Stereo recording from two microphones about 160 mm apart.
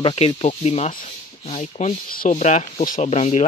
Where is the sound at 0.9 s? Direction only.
55° left (ahead or behind).